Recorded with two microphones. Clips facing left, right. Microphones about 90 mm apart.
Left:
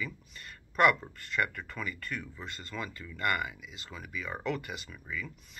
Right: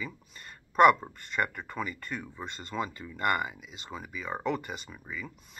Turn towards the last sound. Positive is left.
turn(degrees=-20)  # may be behind; listen again after turning